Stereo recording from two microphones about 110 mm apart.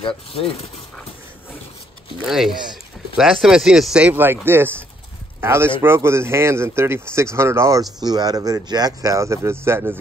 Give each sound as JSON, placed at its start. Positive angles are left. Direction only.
{"t": 0.0, "sound": "speech", "side_deg": 60}
{"t": 2.2, "sound": "speech", "side_deg": -5}
{"t": 8.0, "sound": "speech", "side_deg": -35}